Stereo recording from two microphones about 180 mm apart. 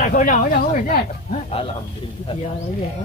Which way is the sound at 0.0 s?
45° left (ahead or behind).